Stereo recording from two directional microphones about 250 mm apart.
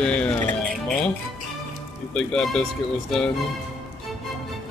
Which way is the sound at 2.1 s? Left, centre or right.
Centre.